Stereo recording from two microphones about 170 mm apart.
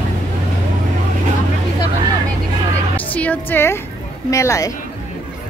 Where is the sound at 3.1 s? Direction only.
10° left (ahead or behind).